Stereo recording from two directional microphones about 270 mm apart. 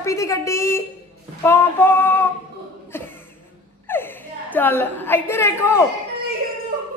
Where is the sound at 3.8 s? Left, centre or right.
Centre.